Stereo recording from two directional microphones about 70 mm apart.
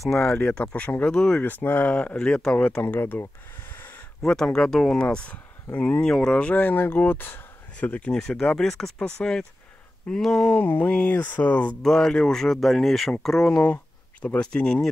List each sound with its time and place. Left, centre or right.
0.0 s speech: centre
1.4 s speech: left
2.8 s speech: left
4.3 s speech: centre
5.0 s speech: centre
6.0 s speech: centre
6.3 s speech: left
8.1 s speech: centre
10.5 s speech: left
11.8 s speech: centre
14.2 s speech: centre